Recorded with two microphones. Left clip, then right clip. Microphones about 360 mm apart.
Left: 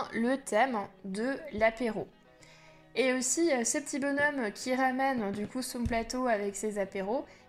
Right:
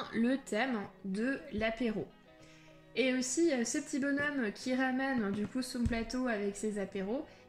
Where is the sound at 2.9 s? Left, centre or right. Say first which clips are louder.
Left 3 dB; centre.